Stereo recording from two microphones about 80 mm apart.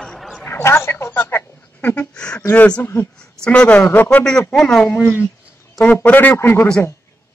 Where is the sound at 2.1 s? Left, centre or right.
Centre.